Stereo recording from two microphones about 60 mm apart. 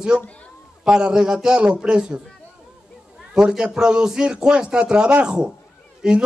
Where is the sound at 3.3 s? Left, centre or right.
Centre.